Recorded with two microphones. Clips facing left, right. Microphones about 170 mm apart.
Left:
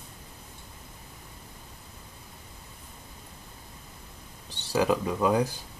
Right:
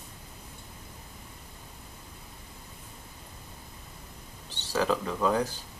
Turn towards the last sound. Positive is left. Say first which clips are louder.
# left 2 dB
turn(degrees=10)  # may be behind; listen again after turning